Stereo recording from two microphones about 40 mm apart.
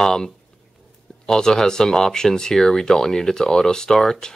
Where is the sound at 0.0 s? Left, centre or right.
Centre.